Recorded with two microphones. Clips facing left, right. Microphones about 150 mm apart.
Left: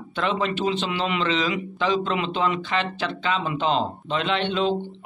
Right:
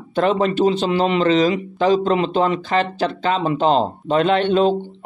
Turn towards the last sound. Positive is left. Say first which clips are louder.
# right 8 dB
turn(degrees=-45)  # may be behind; listen again after turning